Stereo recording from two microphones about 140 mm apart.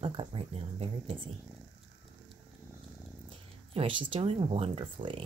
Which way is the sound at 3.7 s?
40° right (ahead or behind).